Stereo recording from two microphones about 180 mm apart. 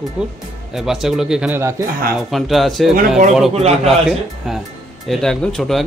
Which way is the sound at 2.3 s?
Centre (ahead or behind).